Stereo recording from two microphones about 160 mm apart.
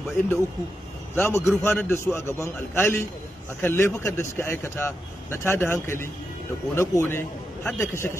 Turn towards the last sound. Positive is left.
turn(degrees=15)  # may be behind; listen again after turning